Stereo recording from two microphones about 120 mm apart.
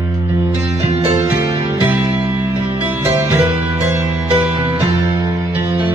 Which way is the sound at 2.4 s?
20° right (ahead or behind).